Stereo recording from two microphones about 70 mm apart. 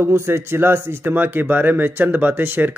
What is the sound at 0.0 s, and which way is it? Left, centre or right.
A man's voice, right.